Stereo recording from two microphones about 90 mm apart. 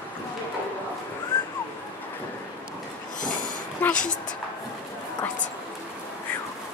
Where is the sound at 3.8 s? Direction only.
20° left (ahead or behind).